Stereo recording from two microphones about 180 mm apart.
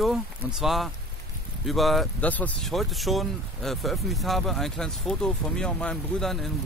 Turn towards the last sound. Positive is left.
turn(degrees=0)  # may be behind; listen again after turning